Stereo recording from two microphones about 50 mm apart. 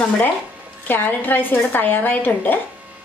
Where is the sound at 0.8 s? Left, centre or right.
Left.